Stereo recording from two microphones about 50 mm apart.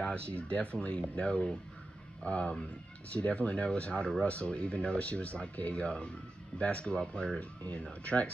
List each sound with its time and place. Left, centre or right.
0.0 s speech: left
7.3 s speech: left